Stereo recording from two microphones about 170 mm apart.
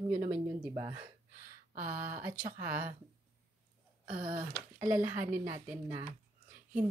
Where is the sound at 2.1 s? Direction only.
50° right (ahead or behind).